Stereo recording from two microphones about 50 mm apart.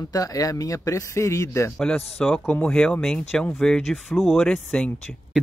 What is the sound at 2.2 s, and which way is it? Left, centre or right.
Speech, centre.